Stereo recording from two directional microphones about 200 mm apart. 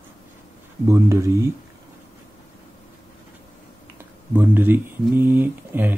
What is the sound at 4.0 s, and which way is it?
Speech, 10° right (ahead or behind).